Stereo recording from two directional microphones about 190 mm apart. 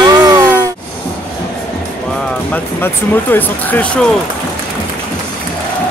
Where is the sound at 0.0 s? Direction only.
20° right (ahead or behind).